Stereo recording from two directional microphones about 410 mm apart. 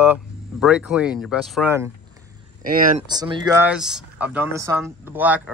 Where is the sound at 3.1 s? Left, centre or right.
Centre.